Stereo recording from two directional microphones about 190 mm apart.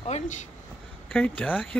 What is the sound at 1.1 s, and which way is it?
Speech, 5° left (ahead or behind).